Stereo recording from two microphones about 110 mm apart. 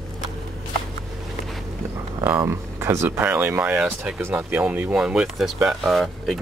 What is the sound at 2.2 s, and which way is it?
Speech, 25° right (ahead or behind).